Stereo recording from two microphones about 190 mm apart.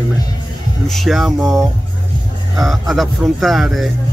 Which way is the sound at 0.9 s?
Centre (ahead or behind).